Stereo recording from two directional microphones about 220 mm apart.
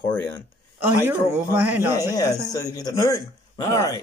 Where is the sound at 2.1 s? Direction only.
15° left (ahead or behind).